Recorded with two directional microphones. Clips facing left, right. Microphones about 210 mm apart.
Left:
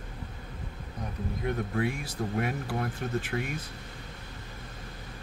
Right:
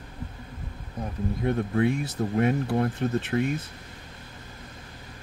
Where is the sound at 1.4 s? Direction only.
30° right (ahead or behind).